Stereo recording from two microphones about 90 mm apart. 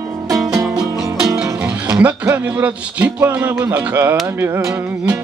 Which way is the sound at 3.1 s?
20° right (ahead or behind).